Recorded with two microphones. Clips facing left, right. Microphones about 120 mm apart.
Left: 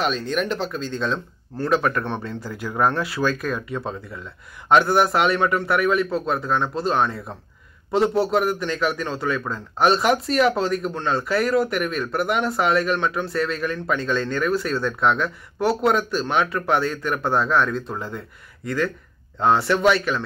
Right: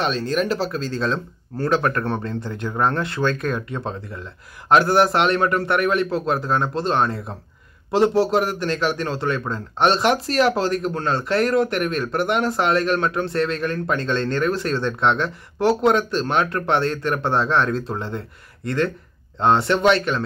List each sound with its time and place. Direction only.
0.0 s speech: centre (ahead or behind)
19.3 s speech: centre (ahead or behind)